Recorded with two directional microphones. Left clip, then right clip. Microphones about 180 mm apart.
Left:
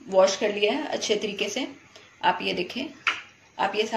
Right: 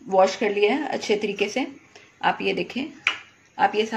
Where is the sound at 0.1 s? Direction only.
65° right (ahead or behind).